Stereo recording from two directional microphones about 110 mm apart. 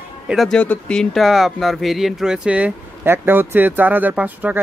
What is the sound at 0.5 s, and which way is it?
Speech, 15° left (ahead or behind).